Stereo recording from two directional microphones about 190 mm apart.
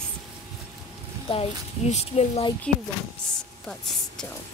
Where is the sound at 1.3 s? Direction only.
35° left (ahead or behind).